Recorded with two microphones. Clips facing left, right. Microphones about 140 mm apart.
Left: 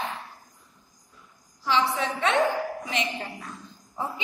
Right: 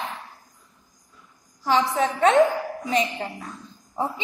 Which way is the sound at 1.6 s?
45° right (ahead or behind).